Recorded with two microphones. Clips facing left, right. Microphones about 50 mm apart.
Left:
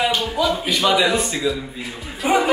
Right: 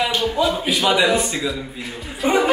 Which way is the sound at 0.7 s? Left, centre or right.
Centre.